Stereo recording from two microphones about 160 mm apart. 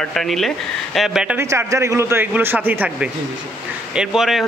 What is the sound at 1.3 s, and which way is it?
Speech, 15° right (ahead or behind).